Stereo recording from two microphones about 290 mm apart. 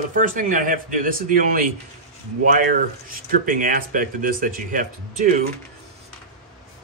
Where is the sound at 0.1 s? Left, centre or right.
Right.